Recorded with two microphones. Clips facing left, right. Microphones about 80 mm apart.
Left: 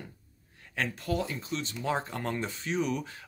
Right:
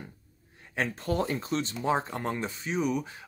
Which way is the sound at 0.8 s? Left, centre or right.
Right.